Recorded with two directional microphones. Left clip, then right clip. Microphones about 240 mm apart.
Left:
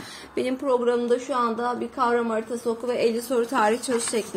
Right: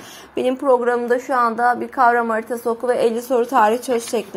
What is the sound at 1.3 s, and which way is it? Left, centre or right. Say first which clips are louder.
A woman's voice: right 8 dB; right.